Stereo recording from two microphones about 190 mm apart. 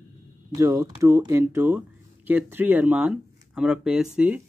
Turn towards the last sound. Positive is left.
turn(degrees=-5)  # may be behind; listen again after turning